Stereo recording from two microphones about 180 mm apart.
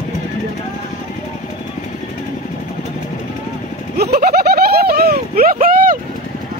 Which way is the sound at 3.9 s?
55° right (ahead or behind).